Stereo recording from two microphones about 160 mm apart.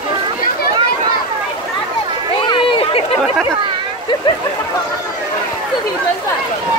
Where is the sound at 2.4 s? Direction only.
35° left (ahead or behind).